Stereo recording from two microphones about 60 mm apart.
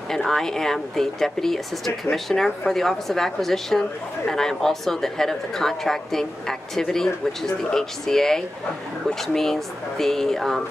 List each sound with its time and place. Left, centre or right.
0.1 s a woman's voice: centre